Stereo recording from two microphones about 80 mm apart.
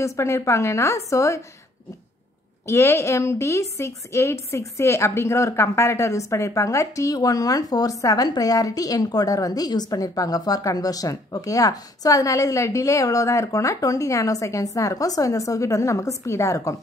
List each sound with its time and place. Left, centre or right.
0.0 s a woman's voice: left
2.6 s a woman's voice: left